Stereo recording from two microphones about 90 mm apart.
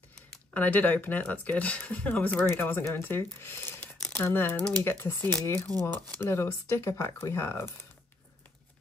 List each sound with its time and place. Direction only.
0.5 s speech: 15° left (ahead or behind)
5.7 s speech: 45° right (ahead or behind)
6.1 s speech: 30° left (ahead or behind)